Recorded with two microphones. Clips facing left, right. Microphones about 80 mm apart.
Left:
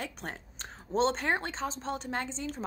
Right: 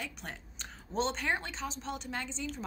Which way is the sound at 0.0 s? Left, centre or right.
Left.